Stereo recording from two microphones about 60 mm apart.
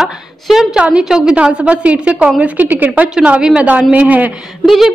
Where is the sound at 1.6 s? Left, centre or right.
Right.